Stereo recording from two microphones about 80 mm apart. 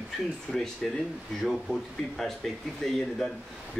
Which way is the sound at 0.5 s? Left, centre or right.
Centre.